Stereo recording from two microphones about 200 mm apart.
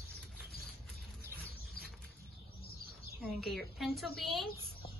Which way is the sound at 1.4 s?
50° left (ahead or behind).